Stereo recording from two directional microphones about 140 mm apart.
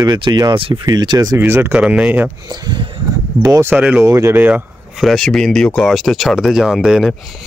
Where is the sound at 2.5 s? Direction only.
30° right (ahead or behind).